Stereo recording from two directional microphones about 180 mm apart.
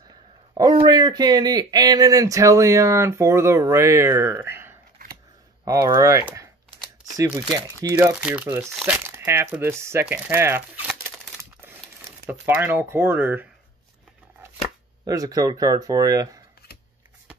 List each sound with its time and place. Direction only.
0.1 s speech: 25° right (ahead or behind)
7.9 s speech: 10° right (ahead or behind)
12.3 s speech: 10° right (ahead or behind)
15.0 s speech: 20° right (ahead or behind)